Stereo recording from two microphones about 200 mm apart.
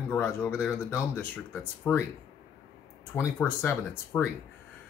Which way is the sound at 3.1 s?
10° left (ahead or behind).